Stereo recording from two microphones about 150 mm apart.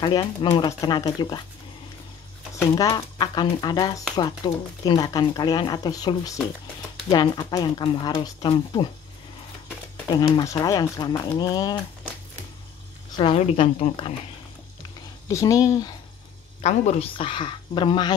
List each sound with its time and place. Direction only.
0.0 s a woman's voice: 30° left (ahead or behind)
2.7 s speech: 30° left (ahead or behind)
10.0 s a woman's voice: 30° left (ahead or behind)
13.1 s a woman's voice: 40° left (ahead or behind)
15.2 s speech: 25° left (ahead or behind)
16.6 s a woman's voice: 45° left (ahead or behind); by 18.1 s 30° left (ahead or behind)